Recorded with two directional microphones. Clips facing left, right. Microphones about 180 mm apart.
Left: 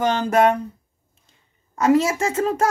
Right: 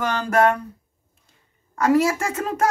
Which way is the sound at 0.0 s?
20° left (ahead or behind).